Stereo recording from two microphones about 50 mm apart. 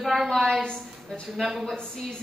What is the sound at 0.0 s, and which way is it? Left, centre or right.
Speech, centre.